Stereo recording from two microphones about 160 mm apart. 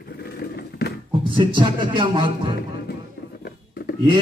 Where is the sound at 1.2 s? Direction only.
30° right (ahead or behind).